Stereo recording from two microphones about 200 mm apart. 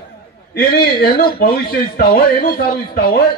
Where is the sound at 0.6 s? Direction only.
45° left (ahead or behind).